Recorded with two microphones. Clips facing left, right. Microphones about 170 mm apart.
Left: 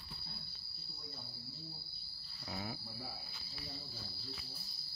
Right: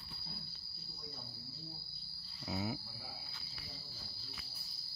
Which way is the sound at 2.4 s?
20° right (ahead or behind).